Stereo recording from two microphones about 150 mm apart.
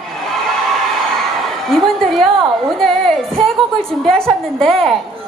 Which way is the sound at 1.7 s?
Centre (ahead or behind).